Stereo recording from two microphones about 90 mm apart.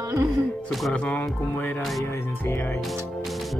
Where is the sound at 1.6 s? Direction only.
20° left (ahead or behind).